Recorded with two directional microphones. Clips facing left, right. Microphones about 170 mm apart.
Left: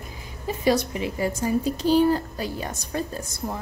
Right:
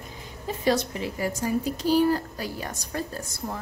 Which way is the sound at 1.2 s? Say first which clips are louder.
Left 2 dB; 25° left (ahead or behind).